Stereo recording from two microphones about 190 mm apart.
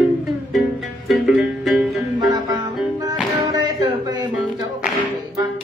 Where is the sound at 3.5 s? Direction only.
20° right (ahead or behind).